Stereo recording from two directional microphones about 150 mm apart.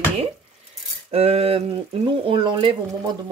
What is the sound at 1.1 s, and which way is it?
Speech, 40° right (ahead or behind).